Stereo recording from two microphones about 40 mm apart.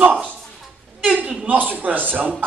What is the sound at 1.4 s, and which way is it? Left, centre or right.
Speech, right.